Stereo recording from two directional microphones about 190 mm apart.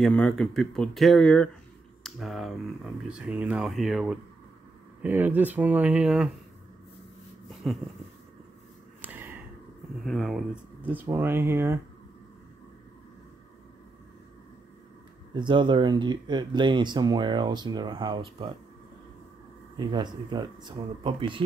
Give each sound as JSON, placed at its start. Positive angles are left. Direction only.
{"t": 0.0, "sound": "speech", "side_deg": 0}
{"t": 7.7, "sound": "speech", "side_deg": 0}
{"t": 9.0, "sound": "a sound", "side_deg": -10}
{"t": 10.0, "sound": "speech", "side_deg": 0}
{"t": 15.3, "sound": "speech", "side_deg": -25}
{"t": 19.8, "sound": "speech", "side_deg": -25}